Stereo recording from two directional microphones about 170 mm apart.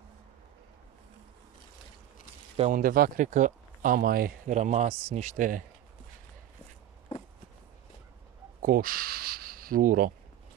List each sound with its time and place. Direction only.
2.7 s speech: 55° right (ahead or behind)
4.6 s speech: 45° right (ahead or behind)
8.6 s speech: 55° right (ahead or behind)